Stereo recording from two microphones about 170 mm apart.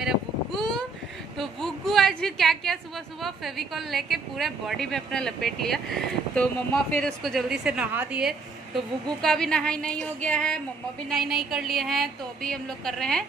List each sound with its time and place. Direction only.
0.0 s wind noise: centre (ahead or behind)
1.4 s a woman's voice: centre (ahead or behind)